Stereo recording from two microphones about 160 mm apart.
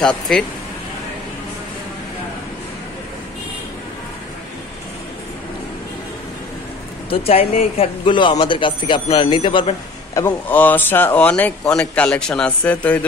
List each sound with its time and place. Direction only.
0.0 s speech: 5° left (ahead or behind)
7.1 s speech: 35° left (ahead or behind)
10.2 s speech: 10° left (ahead or behind)